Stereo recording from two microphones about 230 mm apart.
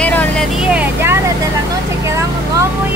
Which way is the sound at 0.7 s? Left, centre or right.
Centre.